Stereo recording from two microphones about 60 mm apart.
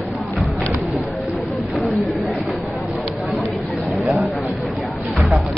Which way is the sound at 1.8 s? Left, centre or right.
Centre.